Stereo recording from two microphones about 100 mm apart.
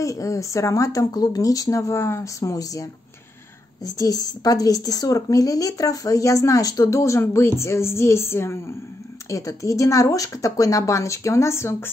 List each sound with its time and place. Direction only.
0.0 s a woman's voice: 35° left (ahead or behind)